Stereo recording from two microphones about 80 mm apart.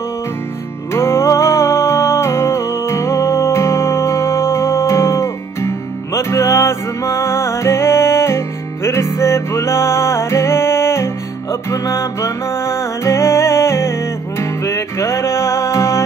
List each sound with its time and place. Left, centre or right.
0.9 s music: left